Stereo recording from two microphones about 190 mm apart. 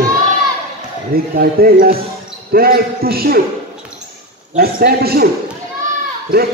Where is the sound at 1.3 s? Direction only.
50° right (ahead or behind).